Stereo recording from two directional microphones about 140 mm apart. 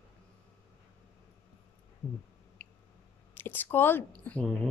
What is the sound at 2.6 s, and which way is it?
Squish, 10° left (ahead or behind).